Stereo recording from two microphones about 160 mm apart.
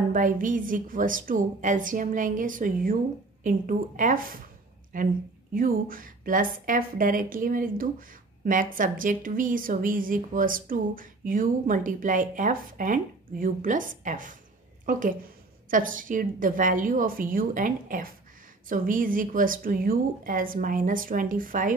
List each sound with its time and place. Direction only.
0.1 s a woman's voice: 55° right (ahead or behind)